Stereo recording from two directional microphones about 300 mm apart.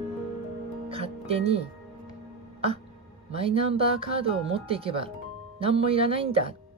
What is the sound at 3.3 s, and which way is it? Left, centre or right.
Speech, centre.